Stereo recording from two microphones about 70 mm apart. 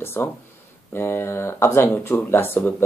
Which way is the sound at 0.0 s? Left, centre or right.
Left.